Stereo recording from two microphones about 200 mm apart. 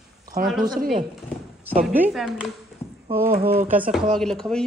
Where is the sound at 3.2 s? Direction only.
35° right (ahead or behind).